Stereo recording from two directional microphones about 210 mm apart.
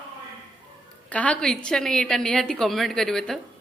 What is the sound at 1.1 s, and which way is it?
A woman's voice, 5° left (ahead or behind).